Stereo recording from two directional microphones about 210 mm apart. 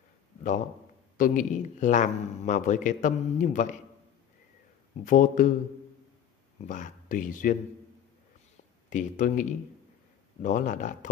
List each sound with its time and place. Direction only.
1.1 s a man's voice: 40° left (ahead or behind)
5.0 s a man's voice: 35° left (ahead or behind)
6.6 s a man's voice: 35° left (ahead or behind)
8.9 s a man's voice: 35° left (ahead or behind)